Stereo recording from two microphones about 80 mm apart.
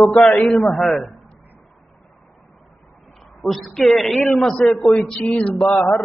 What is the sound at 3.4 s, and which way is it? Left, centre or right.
A man's voice, centre.